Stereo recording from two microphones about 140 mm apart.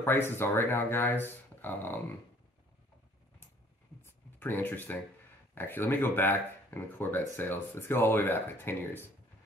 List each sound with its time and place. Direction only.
0.0 s speech: 15° left (ahead or behind)
4.0 s a sound: 15° left (ahead or behind)
5.5 s speech: 15° left (ahead or behind)